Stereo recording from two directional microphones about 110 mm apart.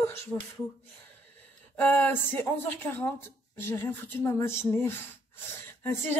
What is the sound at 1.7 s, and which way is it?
Speech, 15° left (ahead or behind).